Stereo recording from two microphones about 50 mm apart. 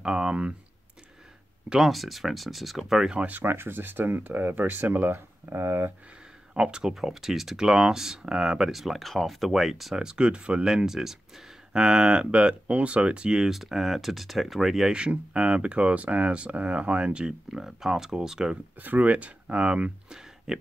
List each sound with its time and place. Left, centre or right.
0.0 s speech: centre
1.8 s speech: centre
3.3 s speech: right
6.5 s speech: centre
10.0 s speech: centre
13.4 s speech: centre
14.9 s speech: centre
17.5 s speech: centre
18.8 s speech: right
20.1 s a sound: centre